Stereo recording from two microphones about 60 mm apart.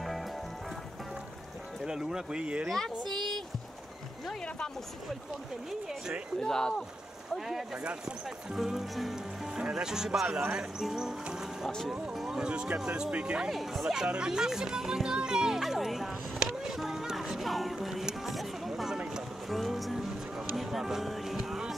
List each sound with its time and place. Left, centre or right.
1.9 s speech: centre
2.7 s speech: centre
6.4 s speech: centre
7.3 s speech: centre
12.4 s speech: centre
13.5 s speech: centre
16.3 s music: centre